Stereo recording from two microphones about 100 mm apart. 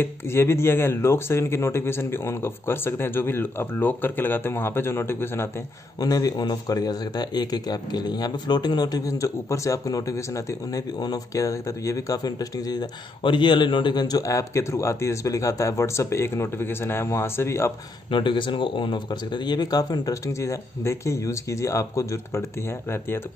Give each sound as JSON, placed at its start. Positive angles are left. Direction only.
{"t": 0.0, "sound": "speech", "side_deg": 25}
{"t": 5.9, "sound": "a man's voice", "side_deg": 40}
{"t": 13.2, "sound": "speech", "side_deg": 55}
{"t": 18.1, "sound": "a man's voice", "side_deg": 55}